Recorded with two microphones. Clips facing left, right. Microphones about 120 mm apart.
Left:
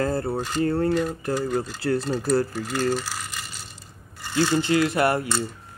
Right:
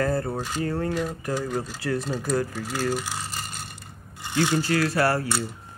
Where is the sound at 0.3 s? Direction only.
5° right (ahead or behind).